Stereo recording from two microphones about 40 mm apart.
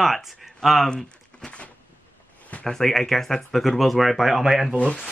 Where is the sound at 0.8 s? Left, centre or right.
Centre.